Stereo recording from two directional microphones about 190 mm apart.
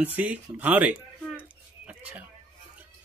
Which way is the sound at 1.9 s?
5° right (ahead or behind).